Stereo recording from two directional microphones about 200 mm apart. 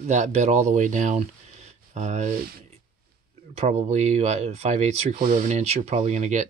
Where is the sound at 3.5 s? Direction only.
30° right (ahead or behind).